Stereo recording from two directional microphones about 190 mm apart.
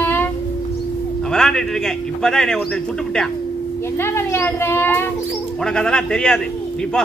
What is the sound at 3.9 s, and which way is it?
Speech, 10° left (ahead or behind).